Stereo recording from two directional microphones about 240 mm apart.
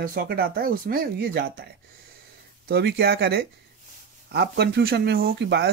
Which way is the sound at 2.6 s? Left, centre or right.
Right.